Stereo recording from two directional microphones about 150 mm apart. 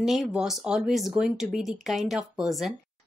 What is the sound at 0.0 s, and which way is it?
A woman's voice, centre (ahead or behind).